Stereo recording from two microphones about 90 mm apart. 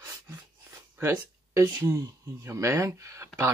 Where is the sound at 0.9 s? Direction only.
30° right (ahead or behind).